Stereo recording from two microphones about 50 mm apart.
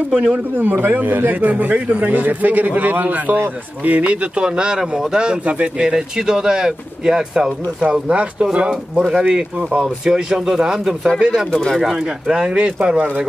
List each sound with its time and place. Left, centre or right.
0.6 s a man's voice: right
9.1 s speech: centre
11.5 s speech: centre
12.0 s a man's voice: centre